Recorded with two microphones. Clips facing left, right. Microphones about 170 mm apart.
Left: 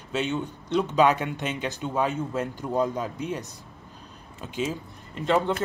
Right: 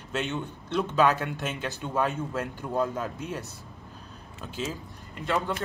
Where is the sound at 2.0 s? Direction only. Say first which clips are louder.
Left 3 dB; 5° right (ahead or behind).